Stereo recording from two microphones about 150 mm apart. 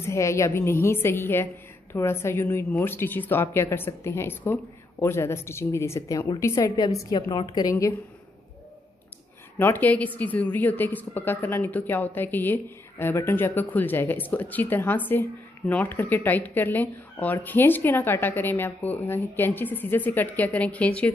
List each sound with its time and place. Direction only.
0.0 s a woman's voice: 20° left (ahead or behind)
9.6 s a woman's voice: 10° left (ahead or behind)